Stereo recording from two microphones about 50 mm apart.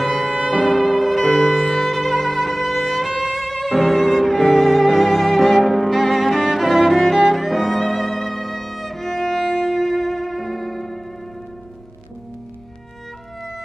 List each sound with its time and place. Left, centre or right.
0.0 s music: centre
0.7 s violin: centre
1.2 s violin: left
1.7 s music: centre
7.2 s violin: centre
7.6 s music: centre